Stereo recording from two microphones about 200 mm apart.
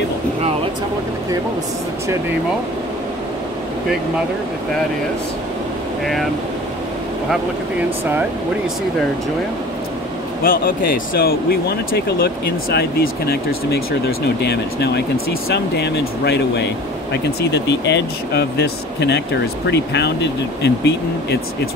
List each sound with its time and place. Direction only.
10.4 s speech: 45° left (ahead or behind)